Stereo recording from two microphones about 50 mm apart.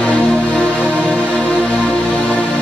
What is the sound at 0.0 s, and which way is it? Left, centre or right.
Music, left.